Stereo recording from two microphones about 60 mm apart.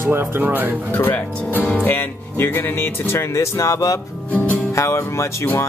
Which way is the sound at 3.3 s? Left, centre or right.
Left.